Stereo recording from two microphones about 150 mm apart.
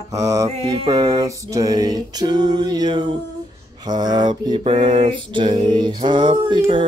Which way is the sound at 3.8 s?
30° right (ahead or behind).